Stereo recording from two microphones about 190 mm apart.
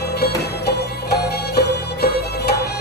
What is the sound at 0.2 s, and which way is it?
Music, 60° left (ahead or behind).